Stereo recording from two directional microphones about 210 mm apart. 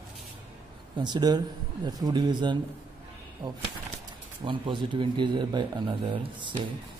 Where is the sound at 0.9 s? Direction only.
20° right (ahead or behind).